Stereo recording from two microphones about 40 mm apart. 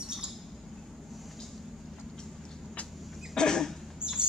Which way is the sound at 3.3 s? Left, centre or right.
Centre.